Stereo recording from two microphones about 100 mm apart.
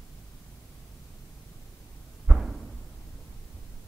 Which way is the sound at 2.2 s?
5° right (ahead or behind).